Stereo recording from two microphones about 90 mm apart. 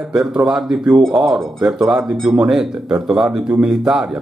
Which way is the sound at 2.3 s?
5° right (ahead or behind).